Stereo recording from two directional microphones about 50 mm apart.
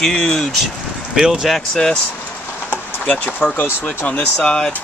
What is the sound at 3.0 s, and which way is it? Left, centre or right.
Speech, left.